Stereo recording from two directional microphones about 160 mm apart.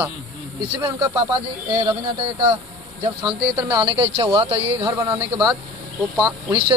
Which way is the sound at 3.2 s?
10° right (ahead or behind).